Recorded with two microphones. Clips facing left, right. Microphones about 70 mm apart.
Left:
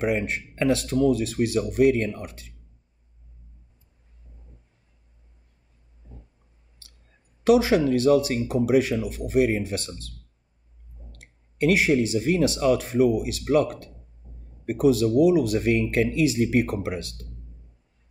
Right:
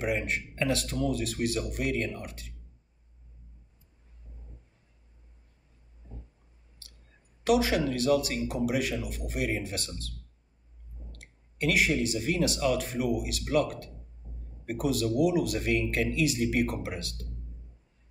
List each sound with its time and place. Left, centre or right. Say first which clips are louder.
0.0 s speech: left 5 dB; left
7.4 s speech: left 7 dB; left
11.1 s speech: left 1 dB; left